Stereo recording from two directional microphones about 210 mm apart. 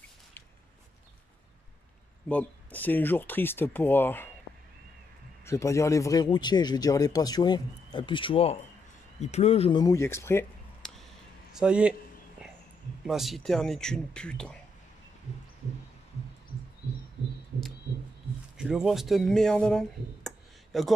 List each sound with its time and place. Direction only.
2.2 s speech: 5° left (ahead or behind)
5.4 s a man's voice: 15° left (ahead or behind)
11.5 s speech: 5° right (ahead or behind)
12.4 s a sound: 5° right (ahead or behind)
13.0 s speech: centre (ahead or behind)
18.6 s speech: 5° right (ahead or behind)